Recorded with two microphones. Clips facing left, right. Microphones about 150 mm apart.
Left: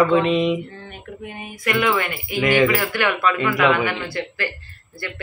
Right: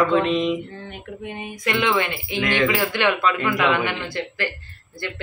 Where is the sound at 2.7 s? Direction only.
20° right (ahead or behind).